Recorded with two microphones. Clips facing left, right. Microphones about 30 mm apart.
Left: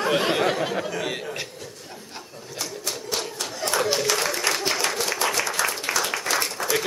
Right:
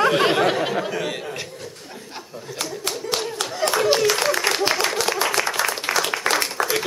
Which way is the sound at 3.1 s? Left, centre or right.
Right.